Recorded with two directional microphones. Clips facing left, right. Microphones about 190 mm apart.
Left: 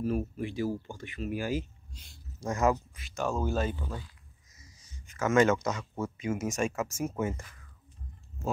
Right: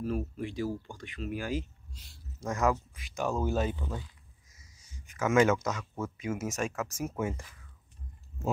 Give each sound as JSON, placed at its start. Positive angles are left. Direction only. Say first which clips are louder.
{"t": 0.0, "sound": "speech", "louder": "left 2 dB", "side_deg": 5}
{"t": 3.0, "sound": "speech", "louder": "even", "side_deg": -15}
{"t": 3.7, "sound": "speech", "louder": "right 1 dB", "side_deg": 0}
{"t": 4.6, "sound": "a sound", "louder": "left 1 dB", "side_deg": -10}
{"t": 5.8, "sound": "speech", "louder": "left 2 dB", "side_deg": 10}
{"t": 6.1, "sound": "speech", "louder": "left 3 dB", "side_deg": -5}